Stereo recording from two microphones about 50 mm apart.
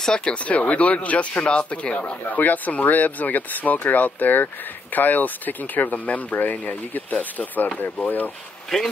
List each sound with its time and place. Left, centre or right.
0.0 s speech: centre
0.5 s speech: left
2.0 s speech: left